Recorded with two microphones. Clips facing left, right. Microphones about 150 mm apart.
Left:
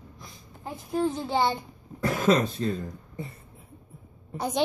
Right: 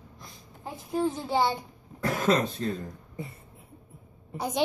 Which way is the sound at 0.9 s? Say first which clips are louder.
Left 1 dB; 5° right (ahead or behind).